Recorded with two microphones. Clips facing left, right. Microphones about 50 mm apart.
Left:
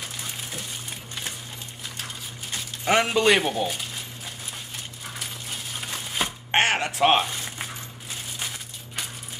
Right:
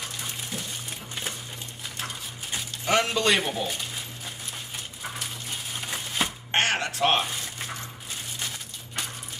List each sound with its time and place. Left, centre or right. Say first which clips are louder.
0.2 s coin: even; centre
2.8 s speech: left 3 dB; centre
5.2 s coin: even; centre
6.5 s a sound: left 4 dB; centre